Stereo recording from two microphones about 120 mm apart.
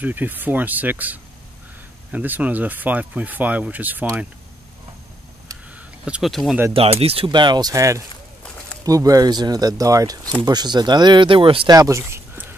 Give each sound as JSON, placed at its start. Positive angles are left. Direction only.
{"t": 0.0, "sound": "speech", "side_deg": -15}
{"t": 6.0, "sound": "speech", "side_deg": -10}
{"t": 6.7, "sound": "speech", "side_deg": -55}
{"t": 7.2, "sound": "speech", "side_deg": -40}
{"t": 11.7, "sound": "a sound", "side_deg": -25}